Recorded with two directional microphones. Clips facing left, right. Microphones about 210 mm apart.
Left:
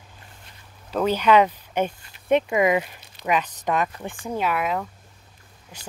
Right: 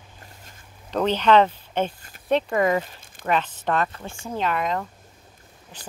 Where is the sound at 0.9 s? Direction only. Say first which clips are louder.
Even; 10° left (ahead or behind).